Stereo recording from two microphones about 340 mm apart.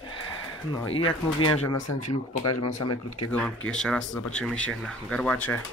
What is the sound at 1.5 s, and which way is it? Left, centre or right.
Speech, left.